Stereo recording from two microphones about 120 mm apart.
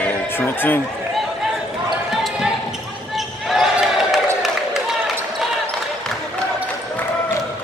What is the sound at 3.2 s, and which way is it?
Basketball bounce, centre (ahead or behind).